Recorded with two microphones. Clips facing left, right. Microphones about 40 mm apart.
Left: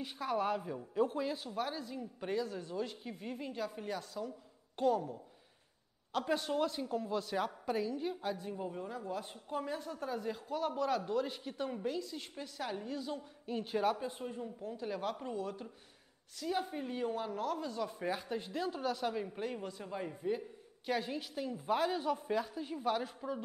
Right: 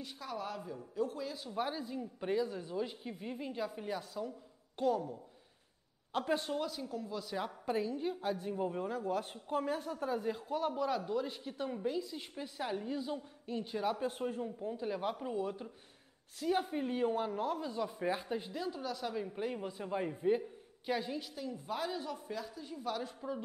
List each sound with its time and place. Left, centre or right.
0.0 s speech: left
1.5 s a woman's voice: centre
6.2 s a woman's voice: centre
6.7 s speech: left
7.4 s a woman's voice: centre
8.5 s a woman's voice: centre; by 9.7 s right
9.8 s a woman's voice: centre
11.1 s a woman's voice: centre
13.6 s speech: centre
14.2 s a woman's voice: centre
18.6 s a woman's voice: centre
20.8 s a woman's voice: centre
21.6 s speech: centre
23.0 s speech: centre